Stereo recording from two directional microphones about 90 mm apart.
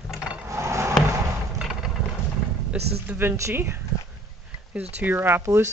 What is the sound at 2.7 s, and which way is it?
A woman's voice, 20° right (ahead or behind).